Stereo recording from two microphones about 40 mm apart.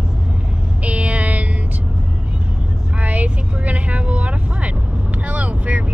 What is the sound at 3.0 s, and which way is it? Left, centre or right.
Vehicle, right.